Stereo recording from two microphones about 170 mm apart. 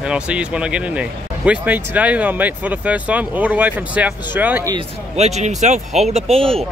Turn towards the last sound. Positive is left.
turn(degrees=-35)  # may be behind; listen again after turning